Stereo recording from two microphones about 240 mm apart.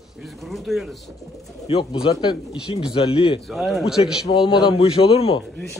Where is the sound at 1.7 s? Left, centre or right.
Left.